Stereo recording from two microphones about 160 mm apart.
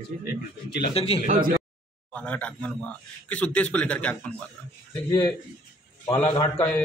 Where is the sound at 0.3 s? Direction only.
90° left.